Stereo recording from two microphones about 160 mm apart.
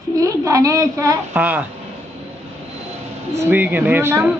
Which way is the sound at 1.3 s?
10° right (ahead or behind).